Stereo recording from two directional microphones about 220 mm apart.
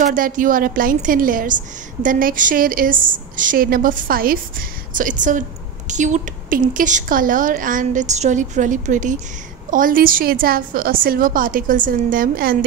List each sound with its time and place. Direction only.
0.0 s a woman's voice: 40° right (ahead or behind)